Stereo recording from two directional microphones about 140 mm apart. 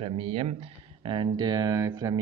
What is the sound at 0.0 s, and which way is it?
Speech, 40° right (ahead or behind).